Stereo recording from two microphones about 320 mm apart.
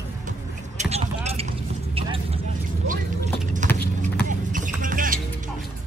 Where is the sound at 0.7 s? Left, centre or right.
Centre.